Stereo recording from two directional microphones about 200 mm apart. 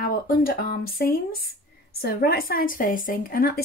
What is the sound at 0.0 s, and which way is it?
A woman's voice, 45° left (ahead or behind).